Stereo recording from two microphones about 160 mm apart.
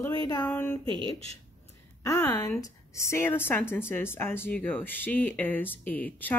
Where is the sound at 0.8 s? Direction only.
30° right (ahead or behind).